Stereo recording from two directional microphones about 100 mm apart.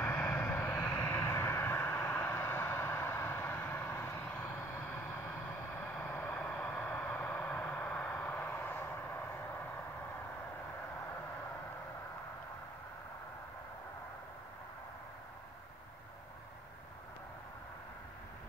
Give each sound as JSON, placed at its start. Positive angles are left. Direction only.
{"t": 0.0, "sound": "vehicle", "side_deg": 25}